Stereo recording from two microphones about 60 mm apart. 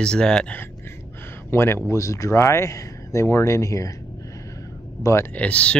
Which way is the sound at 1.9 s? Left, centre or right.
Left.